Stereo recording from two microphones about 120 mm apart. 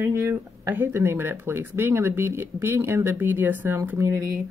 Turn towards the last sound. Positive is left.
turn(degrees=-25)  # may be behind; listen again after turning